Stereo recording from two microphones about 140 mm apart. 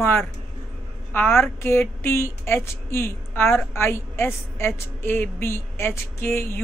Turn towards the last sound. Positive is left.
turn(degrees=15)  # may be behind; listen again after turning